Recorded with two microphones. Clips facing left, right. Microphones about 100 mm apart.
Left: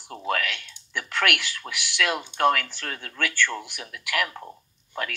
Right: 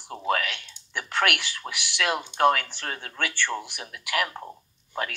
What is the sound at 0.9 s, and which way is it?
Speech, 20° right (ahead or behind).